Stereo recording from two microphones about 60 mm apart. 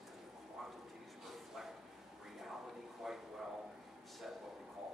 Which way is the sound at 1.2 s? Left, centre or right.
Centre.